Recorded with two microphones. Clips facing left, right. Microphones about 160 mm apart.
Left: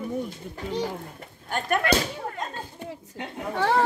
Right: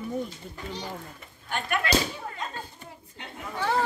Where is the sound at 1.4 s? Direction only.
45° left (ahead or behind).